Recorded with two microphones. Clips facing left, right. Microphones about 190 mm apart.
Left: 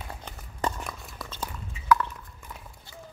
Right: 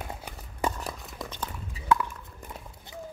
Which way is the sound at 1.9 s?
25° right (ahead or behind).